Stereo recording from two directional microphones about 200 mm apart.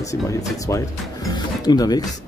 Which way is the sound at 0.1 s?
15° left (ahead or behind).